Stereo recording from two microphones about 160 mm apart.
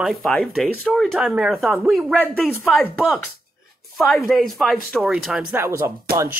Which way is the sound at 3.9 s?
Centre (ahead or behind).